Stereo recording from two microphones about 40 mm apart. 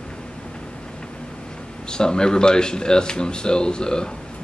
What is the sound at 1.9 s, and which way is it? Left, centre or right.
Speech, centre.